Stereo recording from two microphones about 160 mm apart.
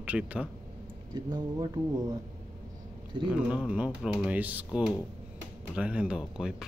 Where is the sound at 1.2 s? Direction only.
25° right (ahead or behind).